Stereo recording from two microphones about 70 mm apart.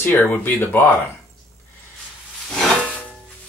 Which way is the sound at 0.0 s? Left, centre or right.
Left.